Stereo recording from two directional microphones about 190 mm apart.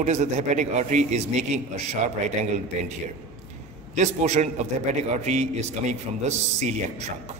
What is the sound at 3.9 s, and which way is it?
A man's voice, 35° right (ahead or behind).